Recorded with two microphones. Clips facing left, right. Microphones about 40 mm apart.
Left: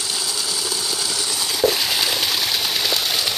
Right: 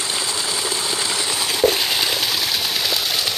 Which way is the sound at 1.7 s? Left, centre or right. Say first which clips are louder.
Even; centre.